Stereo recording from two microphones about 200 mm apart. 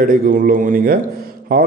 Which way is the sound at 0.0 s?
45° right (ahead or behind).